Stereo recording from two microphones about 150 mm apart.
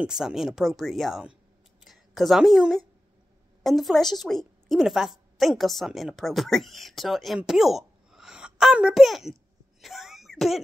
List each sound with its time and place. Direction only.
0.0 s a woman's voice: 5° right (ahead or behind)